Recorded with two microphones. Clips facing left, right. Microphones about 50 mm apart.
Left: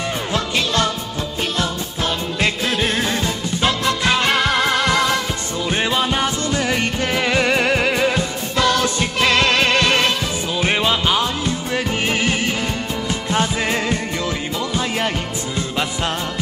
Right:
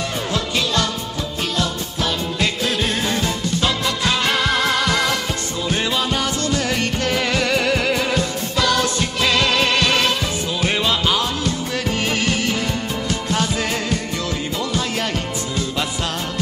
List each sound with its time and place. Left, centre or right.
0.3 s music: left
5.7 s music: left